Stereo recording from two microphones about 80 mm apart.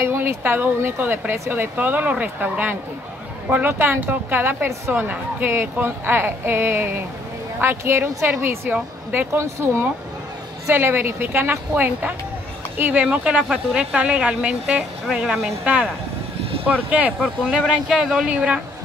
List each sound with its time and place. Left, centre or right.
0.0 s speech: right
4.9 s speech: centre
5.5 s a woman's voice: right
9.4 s a woman's voice: right; by 14.9 s centre
15.0 s a woman's voice: centre
15.6 s speech: centre
17.2 s speech: centre